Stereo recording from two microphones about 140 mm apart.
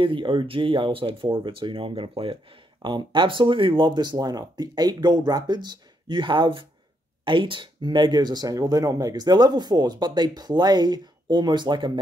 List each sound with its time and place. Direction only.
0.0 s speech: 35° right (ahead or behind)